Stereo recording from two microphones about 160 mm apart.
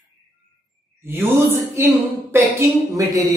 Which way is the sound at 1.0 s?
15° right (ahead or behind).